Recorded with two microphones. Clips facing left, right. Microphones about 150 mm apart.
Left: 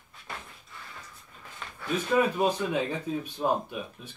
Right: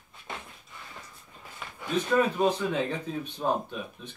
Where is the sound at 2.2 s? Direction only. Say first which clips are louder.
Even; 10° left (ahead or behind).